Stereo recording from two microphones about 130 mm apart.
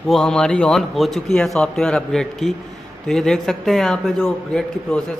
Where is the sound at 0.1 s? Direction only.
5° left (ahead or behind).